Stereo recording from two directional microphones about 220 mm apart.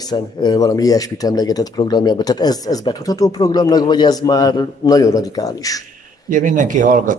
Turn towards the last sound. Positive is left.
turn(degrees=-35)  # may be behind; listen again after turning